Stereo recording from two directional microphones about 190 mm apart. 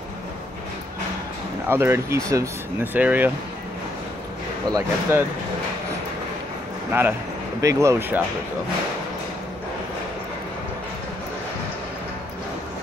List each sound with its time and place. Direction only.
1.7 s speech: 15° right (ahead or behind)
4.6 s speech: 20° right (ahead or behind)
6.9 s speech: 10° right (ahead or behind)